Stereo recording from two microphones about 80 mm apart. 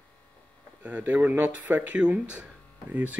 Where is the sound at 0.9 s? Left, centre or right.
Centre.